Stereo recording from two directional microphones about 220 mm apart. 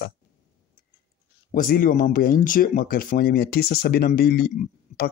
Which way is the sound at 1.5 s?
40° left (ahead or behind).